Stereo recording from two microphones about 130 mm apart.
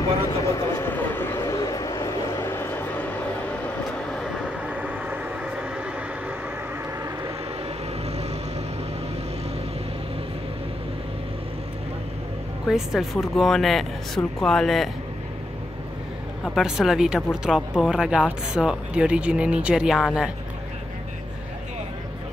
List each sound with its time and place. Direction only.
0.5 s vehicle: 20° left (ahead or behind)
4.5 s vehicle: 10° right (ahead or behind)
12.6 s speech: 5° right (ahead or behind)
16.4 s speech: 5° right (ahead or behind)